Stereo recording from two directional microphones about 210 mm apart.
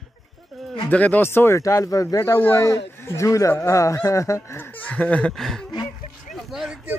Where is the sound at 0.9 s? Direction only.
5° left (ahead or behind).